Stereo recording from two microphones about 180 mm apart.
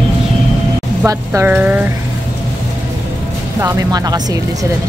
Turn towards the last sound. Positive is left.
turn(degrees=-20)  # may be behind; listen again after turning